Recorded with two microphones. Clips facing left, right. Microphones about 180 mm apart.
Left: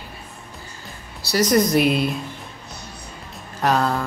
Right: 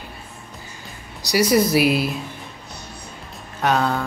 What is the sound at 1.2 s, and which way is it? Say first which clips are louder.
Speech: right 1 dB; 10° right (ahead or behind).